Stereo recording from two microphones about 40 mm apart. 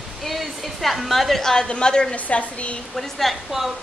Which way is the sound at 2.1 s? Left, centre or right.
Left.